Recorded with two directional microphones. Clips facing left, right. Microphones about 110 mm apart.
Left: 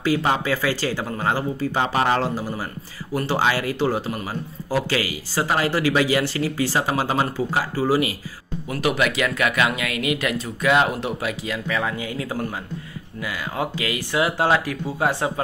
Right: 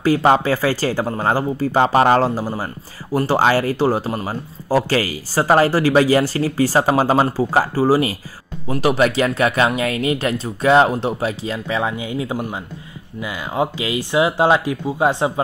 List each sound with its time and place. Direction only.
0.0 s speech: 45° right (ahead or behind); by 15.4 s 20° right (ahead or behind)